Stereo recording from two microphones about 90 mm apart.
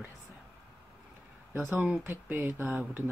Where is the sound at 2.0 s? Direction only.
25° right (ahead or behind).